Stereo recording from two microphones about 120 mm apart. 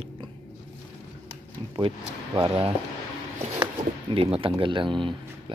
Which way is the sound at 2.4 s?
50° right (ahead or behind).